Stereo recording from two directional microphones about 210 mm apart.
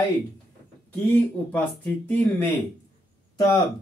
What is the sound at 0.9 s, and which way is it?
Speech, 5° left (ahead or behind).